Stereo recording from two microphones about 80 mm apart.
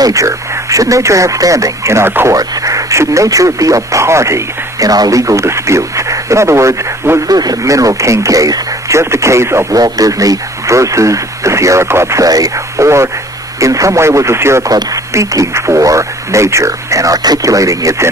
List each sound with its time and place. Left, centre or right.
0.0 s speech: right
2.3 s speech: right
7.2 s speech: right
9.7 s speech: right